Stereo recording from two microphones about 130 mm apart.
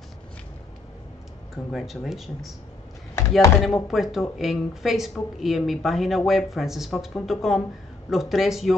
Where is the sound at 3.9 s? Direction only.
Centre (ahead or behind).